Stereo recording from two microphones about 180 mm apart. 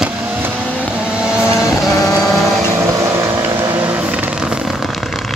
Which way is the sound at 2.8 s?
15° right (ahead or behind).